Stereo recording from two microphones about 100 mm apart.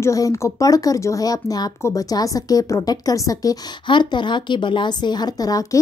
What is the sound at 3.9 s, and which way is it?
A woman's voice, 50° left (ahead or behind).